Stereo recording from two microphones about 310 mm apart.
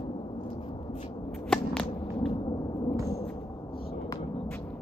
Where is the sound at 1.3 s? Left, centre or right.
Centre.